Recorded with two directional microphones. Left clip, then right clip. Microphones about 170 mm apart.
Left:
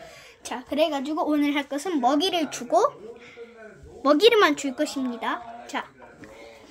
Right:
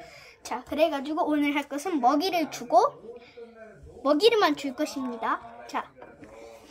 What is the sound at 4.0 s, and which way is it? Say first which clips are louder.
A woman's voice: left 4 dB; 25° left (ahead or behind).